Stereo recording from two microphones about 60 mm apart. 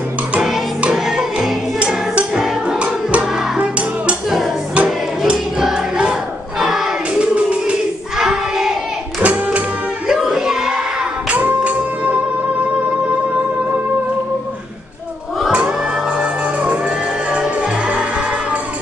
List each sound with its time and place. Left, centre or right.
0.9 s music: centre
1.8 s music: centre
4.7 s music: centre
7.2 s music: centre
8.2 s a sound: centre
9.2 s music: right
10.0 s music: centre
11.2 s music: right
17.3 s music: centre